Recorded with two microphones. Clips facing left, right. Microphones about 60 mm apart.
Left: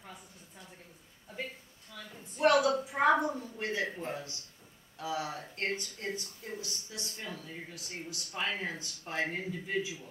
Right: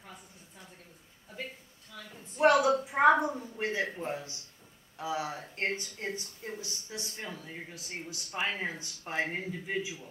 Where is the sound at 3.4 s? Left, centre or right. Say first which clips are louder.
Right 2 dB; centre.